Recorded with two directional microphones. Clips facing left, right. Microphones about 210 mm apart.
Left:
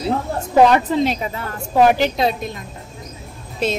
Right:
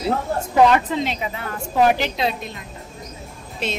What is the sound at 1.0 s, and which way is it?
A woman's voice, 40° left (ahead or behind).